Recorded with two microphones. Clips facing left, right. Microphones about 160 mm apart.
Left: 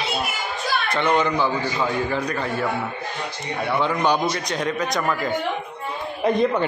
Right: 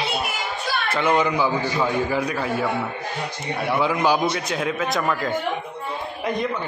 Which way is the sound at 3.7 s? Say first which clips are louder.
Right 1 dB; 5° right (ahead or behind).